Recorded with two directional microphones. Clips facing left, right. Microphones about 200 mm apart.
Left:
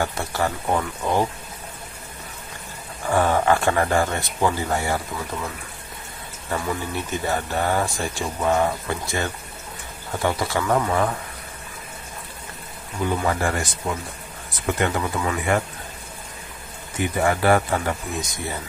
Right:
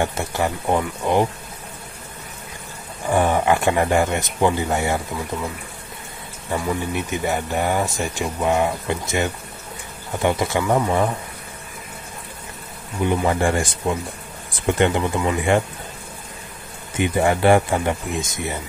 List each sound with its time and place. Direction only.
0.0 s speech: 20° right (ahead or behind)
3.1 s speech: 15° right (ahead or behind)
6.5 s speech: 15° right (ahead or behind)
13.0 s speech: 20° right (ahead or behind)
14.7 s speech: 25° right (ahead or behind)
16.9 s speech: 20° right (ahead or behind)